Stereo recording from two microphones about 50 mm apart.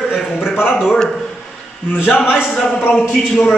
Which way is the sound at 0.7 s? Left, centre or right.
Centre.